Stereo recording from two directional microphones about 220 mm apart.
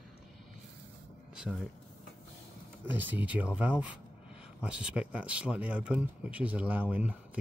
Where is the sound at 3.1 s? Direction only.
5° right (ahead or behind).